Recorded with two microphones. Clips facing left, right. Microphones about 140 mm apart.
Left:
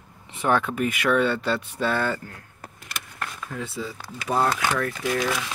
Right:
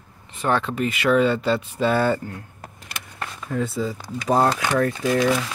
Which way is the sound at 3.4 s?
45° right (ahead or behind).